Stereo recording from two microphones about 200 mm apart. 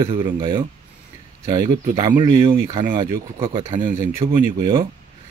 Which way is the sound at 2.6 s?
20° right (ahead or behind).